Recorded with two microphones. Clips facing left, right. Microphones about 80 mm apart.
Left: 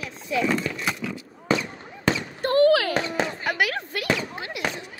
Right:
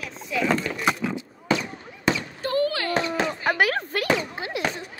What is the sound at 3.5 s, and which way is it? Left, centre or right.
Speech, right.